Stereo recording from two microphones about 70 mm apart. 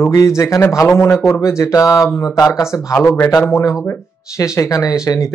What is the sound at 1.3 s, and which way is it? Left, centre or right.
Speech, left.